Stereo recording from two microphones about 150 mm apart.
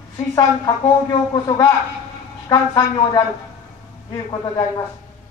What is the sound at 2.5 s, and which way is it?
A man's voice, 30° left (ahead or behind).